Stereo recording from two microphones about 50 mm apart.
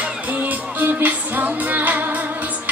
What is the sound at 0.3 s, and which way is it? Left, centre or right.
Music, right.